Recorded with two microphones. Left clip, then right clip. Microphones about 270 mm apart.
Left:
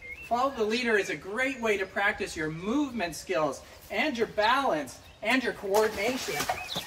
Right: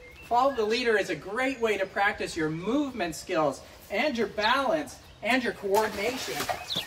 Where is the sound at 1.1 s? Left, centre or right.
Centre.